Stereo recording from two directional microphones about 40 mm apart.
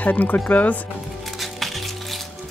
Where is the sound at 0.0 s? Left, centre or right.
Left.